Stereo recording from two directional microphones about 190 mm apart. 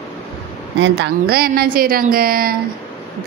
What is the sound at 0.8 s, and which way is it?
A woman's voice, 60° right (ahead or behind).